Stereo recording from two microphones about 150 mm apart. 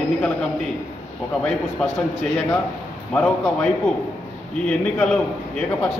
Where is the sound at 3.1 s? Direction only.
10° left (ahead or behind).